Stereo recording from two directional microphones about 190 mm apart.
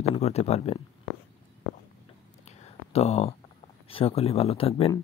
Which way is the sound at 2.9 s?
35° left (ahead or behind).